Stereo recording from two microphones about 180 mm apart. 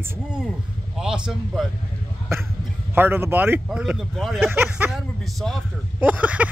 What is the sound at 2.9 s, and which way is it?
Speech, 10° right (ahead or behind).